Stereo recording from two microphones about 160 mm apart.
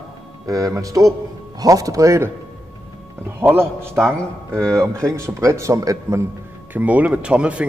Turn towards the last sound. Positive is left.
turn(degrees=-5)  # may be behind; listen again after turning